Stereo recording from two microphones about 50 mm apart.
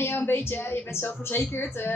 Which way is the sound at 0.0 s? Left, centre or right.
Left.